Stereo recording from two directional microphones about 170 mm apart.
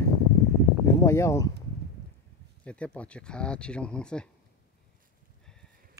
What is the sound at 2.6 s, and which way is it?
Speech, 5° left (ahead or behind).